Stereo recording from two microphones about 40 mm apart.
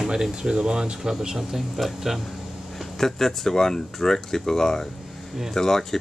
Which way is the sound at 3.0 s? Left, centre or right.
Centre.